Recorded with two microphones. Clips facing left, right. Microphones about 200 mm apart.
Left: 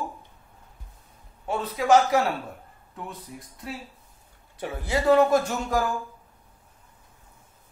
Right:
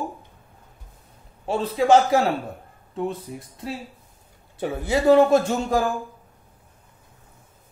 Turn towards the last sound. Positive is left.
turn(degrees=-25)  # may be behind; listen again after turning